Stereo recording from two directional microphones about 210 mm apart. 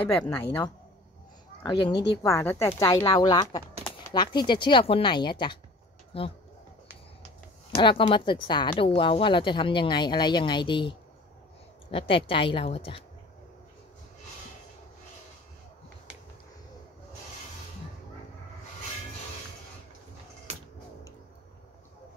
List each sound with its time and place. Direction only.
0.0 s speech: 5° left (ahead or behind)
1.6 s a woman's voice: 20° left (ahead or behind)
7.7 s a woman's voice: 25° left (ahead or behind)